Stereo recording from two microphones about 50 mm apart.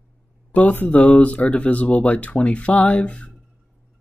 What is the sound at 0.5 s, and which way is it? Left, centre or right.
Speech, left.